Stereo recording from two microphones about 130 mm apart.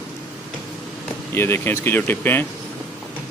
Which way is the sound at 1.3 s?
15° left (ahead or behind).